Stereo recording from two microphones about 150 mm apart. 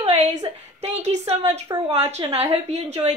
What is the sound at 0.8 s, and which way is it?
A woman's voice, 50° right (ahead or behind).